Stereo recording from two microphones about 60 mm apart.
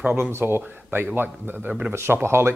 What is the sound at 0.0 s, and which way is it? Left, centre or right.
Speech, right.